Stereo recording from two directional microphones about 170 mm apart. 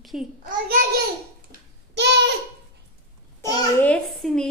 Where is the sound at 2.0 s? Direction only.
85° right.